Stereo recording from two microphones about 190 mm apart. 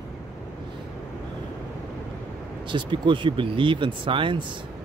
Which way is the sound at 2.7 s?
25° right (ahead or behind).